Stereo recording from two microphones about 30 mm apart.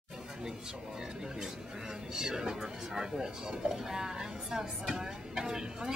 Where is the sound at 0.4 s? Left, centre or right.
Centre.